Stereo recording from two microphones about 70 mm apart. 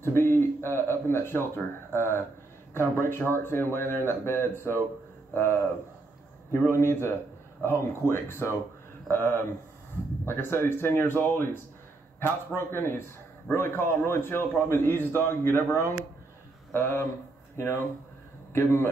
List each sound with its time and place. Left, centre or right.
0.0 s a man's voice: left